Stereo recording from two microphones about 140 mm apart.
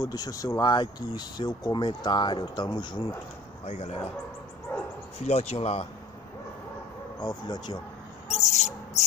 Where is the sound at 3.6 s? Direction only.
50° left (ahead or behind).